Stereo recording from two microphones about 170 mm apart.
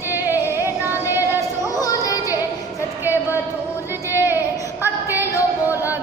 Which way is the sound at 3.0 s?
10° right (ahead or behind).